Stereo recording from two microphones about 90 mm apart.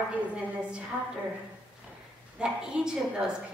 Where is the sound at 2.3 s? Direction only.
10° right (ahead or behind).